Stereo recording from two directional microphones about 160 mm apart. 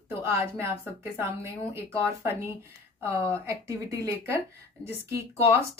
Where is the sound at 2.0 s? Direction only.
20° right (ahead or behind).